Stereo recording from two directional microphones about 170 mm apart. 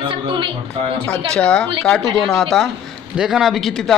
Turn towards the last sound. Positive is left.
turn(degrees=0)  # may be behind; listen again after turning